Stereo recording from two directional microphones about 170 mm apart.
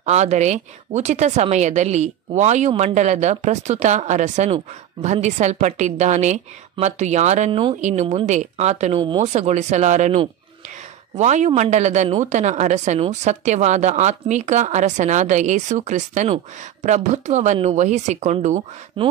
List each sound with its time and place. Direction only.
0.0 s a woman's voice: 40° right (ahead or behind)
19.0 s speech: 30° right (ahead or behind)